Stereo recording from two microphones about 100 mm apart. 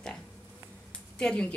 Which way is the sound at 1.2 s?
10° left (ahead or behind).